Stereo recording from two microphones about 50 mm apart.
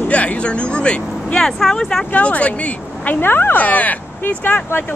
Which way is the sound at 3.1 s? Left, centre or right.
Left.